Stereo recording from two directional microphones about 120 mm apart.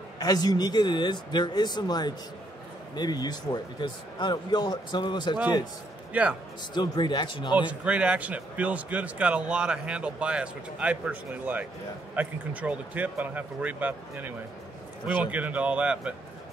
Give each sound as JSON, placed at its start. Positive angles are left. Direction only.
{"t": 0.2, "sound": "a man's voice", "side_deg": 35}
{"t": 6.1, "sound": "speech", "side_deg": -10}
{"t": 6.7, "sound": "a man's voice", "side_deg": 40}
{"t": 7.5, "sound": "speech", "side_deg": -10}